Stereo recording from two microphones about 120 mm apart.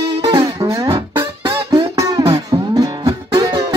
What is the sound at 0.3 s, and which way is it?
Music, 35° right (ahead or behind).